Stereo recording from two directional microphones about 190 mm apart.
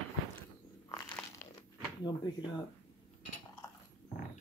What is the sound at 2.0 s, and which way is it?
Speech, 25° left (ahead or behind).